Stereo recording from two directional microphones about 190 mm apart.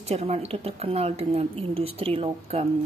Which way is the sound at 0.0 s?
35° right (ahead or behind).